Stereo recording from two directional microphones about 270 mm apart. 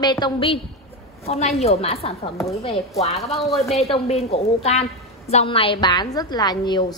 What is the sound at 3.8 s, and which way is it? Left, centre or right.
A woman's voice, left.